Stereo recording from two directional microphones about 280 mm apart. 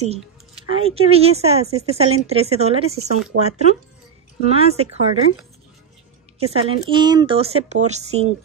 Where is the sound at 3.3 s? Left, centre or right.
Right.